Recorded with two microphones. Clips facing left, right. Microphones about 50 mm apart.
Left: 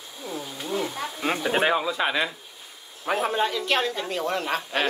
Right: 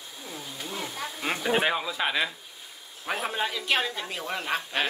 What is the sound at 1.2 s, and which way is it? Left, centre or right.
Speech, centre.